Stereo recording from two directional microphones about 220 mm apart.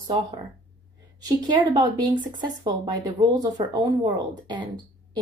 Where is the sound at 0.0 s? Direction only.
15° right (ahead or behind).